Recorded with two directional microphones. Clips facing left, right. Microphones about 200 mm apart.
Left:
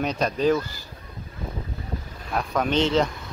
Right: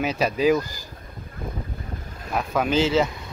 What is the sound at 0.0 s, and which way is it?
Speech, 5° right (ahead or behind).